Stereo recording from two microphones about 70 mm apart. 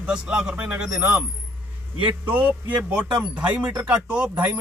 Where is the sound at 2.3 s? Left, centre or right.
Right.